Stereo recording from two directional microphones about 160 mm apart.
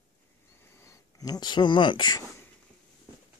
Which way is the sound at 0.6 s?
15° left (ahead or behind).